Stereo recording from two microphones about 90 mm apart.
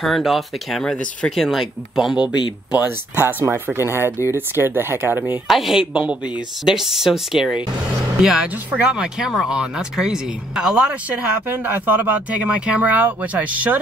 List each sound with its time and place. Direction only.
0.0 s speech: centre (ahead or behind)
3.2 s speech: 25° right (ahead or behind)
5.5 s speech: 5° right (ahead or behind)
5.9 s speech: 15° right (ahead or behind)
6.6 s speech: 5° right (ahead or behind)